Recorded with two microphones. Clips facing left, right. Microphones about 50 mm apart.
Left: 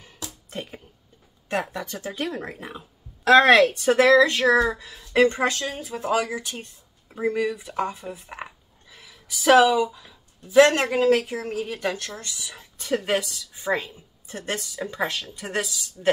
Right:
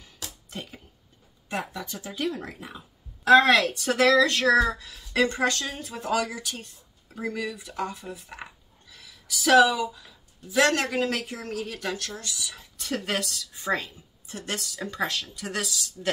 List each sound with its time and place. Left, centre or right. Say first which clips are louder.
0.0 s a sound: left 3 dB; left
1.5 s speech: left 5 dB; left
5.5 s speech: left 2 dB; centre
6.3 s speech: left 4 dB; left
11.0 s speech: left 8 dB; centre
14.2 s speech: left 3 dB; left
14.7 s speech: even; centre